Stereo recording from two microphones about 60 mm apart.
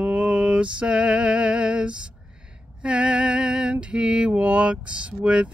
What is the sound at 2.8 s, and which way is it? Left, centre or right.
Lullaby, centre.